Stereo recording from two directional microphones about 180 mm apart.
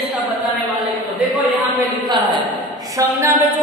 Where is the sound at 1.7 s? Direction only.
25° right (ahead or behind).